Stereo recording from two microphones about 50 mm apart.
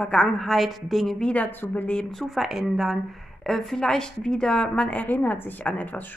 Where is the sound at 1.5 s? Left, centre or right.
Left.